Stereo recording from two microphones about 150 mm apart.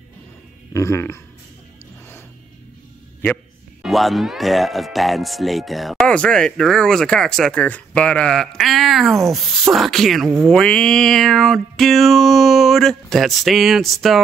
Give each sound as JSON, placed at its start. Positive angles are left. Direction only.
{"t": 0.7, "sound": "speech", "side_deg": 20}
{"t": 3.8, "sound": "speech", "side_deg": 0}